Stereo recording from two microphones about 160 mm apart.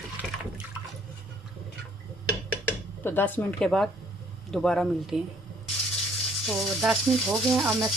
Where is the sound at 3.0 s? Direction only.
10° left (ahead or behind).